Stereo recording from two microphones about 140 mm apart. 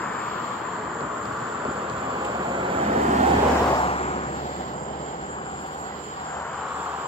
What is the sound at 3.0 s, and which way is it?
Vehicle, 55° right (ahead or behind).